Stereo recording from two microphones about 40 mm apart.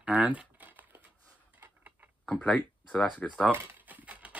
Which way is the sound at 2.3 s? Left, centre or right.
Left.